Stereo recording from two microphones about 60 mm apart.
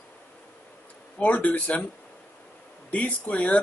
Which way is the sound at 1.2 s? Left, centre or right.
Left.